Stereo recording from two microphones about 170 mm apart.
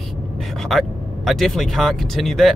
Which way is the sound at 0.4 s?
Centre (ahead or behind).